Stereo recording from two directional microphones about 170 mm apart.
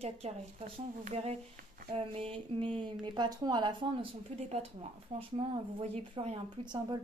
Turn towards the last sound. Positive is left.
turn(degrees=-25)  # may be behind; listen again after turning